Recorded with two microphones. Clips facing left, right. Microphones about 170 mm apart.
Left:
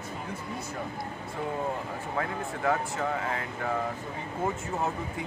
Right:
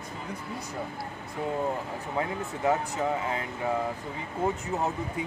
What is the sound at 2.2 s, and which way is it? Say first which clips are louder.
Speech: right 2 dB; 20° right (ahead or behind).